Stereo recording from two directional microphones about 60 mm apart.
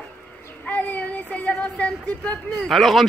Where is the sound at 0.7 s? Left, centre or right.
Left.